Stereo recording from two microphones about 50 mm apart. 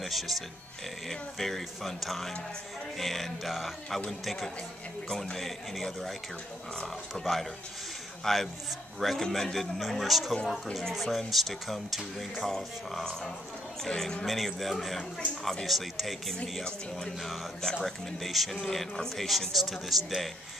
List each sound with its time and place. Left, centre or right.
0.0 s speech: centre
7.2 s speech: centre
8.2 s a man's voice: centre
10.3 s speech: centre
11.0 s speech: centre